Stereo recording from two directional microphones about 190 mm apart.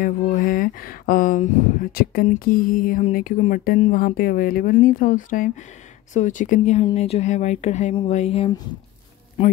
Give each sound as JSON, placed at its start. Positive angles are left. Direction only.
{"t": 0.0, "sound": "speech", "side_deg": 45}